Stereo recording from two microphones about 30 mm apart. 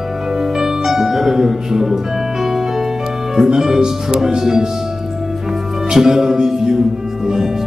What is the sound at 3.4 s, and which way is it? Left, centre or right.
Speech, centre.